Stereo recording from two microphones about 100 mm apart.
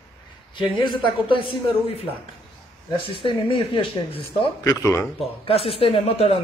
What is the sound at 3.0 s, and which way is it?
Speech, 60° left (ahead or behind).